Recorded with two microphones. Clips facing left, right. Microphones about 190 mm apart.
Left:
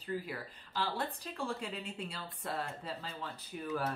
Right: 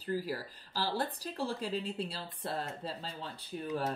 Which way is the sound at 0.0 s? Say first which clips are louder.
Right 4 dB; 35° right (ahead or behind).